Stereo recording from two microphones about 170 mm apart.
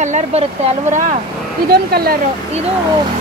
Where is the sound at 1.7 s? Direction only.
65° right (ahead or behind).